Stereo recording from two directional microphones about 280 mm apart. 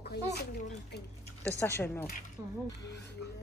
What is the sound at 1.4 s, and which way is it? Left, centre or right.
Speech, centre.